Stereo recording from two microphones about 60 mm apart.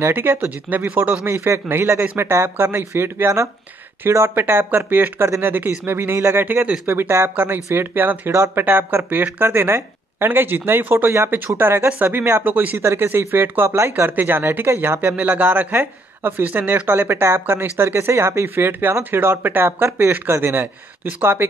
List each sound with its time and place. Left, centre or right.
0.0 s a man's voice: right
1.2 s a man's voice: right
5.2 s a man's voice: right
13.7 s a man's voice: right